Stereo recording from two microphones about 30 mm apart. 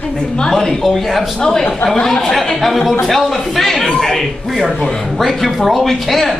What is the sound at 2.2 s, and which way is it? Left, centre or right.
A man's voice, centre.